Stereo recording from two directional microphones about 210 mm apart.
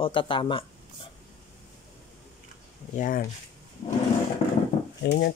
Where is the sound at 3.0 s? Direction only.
40° left (ahead or behind).